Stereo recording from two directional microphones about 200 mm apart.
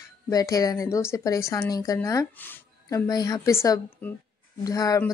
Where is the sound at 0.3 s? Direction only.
15° left (ahead or behind).